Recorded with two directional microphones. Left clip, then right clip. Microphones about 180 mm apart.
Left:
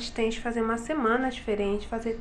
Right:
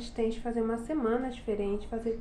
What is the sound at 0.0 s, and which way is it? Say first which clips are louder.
A woman's voice: left 4 dB; centre (ahead or behind).